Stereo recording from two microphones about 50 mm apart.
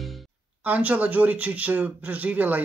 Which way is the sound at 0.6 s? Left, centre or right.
Right.